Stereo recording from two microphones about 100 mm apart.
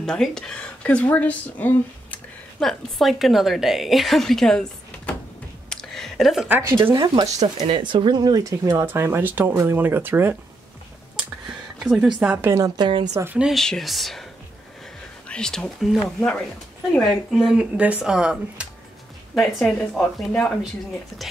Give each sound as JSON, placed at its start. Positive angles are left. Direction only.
{"t": 0.0, "sound": "speech", "side_deg": 5}
{"t": 2.6, "sound": "a woman's voice", "side_deg": 0}
{"t": 5.7, "sound": "a sound", "side_deg": 5}
{"t": 6.8, "sound": "speech", "side_deg": -55}
{"t": 11.8, "sound": "a woman's voice", "side_deg": -5}
{"t": 12.5, "sound": "speech", "side_deg": -40}
{"t": 13.1, "sound": "speech", "side_deg": -25}
{"t": 13.4, "sound": "a woman's voice", "side_deg": 0}
{"t": 15.2, "sound": "a woman's voice", "side_deg": 10}
{"t": 17.5, "sound": "speech", "side_deg": -10}
{"t": 19.3, "sound": "a woman's voice", "side_deg": 5}